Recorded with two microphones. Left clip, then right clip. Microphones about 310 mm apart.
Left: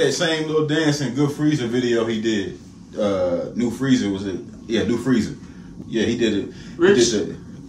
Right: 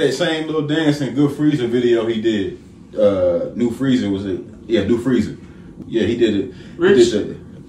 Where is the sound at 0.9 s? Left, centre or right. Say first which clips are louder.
Right 4 dB; centre.